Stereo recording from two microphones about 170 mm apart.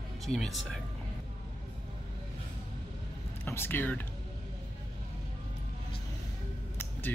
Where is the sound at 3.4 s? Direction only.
10° left (ahead or behind).